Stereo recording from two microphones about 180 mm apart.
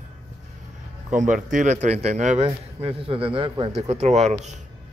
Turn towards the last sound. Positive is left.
turn(degrees=-40)  # may be behind; listen again after turning